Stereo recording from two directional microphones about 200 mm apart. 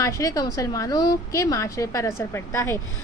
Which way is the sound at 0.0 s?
15° left (ahead or behind).